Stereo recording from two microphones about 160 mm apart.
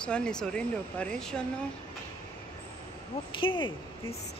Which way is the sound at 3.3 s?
30° left (ahead or behind).